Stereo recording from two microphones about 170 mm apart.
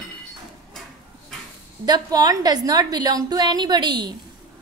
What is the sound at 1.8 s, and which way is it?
A woman's voice, 25° right (ahead or behind).